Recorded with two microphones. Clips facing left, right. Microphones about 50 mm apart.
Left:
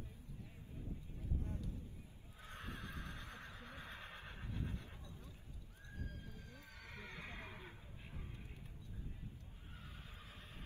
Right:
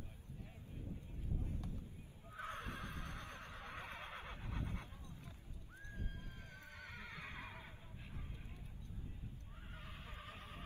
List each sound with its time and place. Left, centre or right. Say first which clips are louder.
2.3 s neigh: right 5 dB; right
6.5 s neigh: right 5 dB; right
9.8 s vehicle: right 3 dB; right